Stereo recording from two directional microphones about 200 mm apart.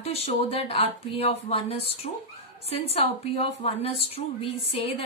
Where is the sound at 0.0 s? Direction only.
30° left (ahead or behind).